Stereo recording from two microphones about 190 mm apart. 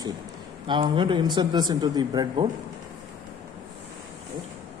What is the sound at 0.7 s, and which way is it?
Speech, 25° right (ahead or behind).